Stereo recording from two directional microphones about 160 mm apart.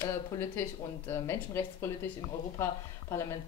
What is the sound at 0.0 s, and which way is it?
Speech, 15° left (ahead or behind).